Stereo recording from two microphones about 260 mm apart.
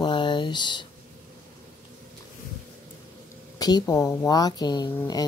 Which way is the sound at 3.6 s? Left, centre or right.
Centre.